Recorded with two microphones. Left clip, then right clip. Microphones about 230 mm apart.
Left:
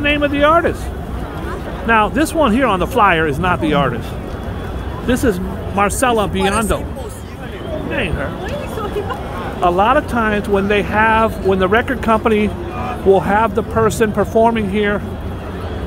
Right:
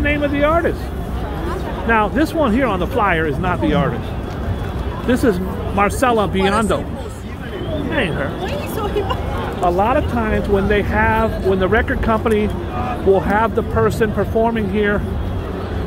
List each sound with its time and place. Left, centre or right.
0.0 s speech: centre
1.9 s speech: centre
5.0 s speech: centre
7.9 s speech: centre
9.7 s speech: left